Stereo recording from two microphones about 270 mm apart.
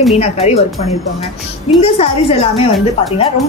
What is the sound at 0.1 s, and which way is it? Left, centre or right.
Speech, left.